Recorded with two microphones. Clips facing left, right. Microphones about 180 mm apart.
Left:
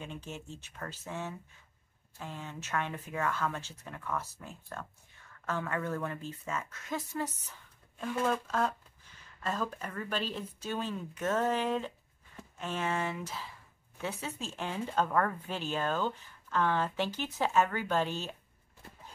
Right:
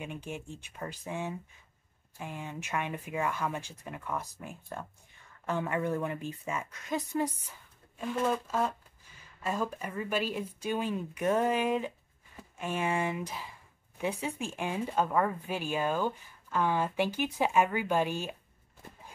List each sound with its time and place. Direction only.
0.0 s speech: 15° right (ahead or behind)